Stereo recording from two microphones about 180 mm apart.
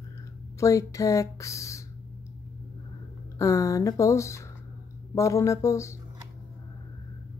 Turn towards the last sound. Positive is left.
turn(degrees=15)  # may be behind; listen again after turning